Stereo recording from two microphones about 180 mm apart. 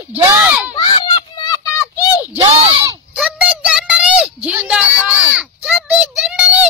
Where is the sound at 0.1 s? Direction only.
10° right (ahead or behind).